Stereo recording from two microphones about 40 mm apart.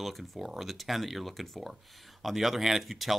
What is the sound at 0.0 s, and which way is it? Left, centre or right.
Speech, centre.